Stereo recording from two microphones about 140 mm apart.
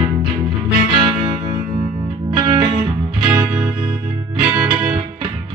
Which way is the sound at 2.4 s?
35° right (ahead or behind).